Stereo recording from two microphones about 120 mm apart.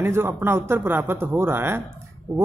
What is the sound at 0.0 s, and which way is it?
Speech, 20° right (ahead or behind).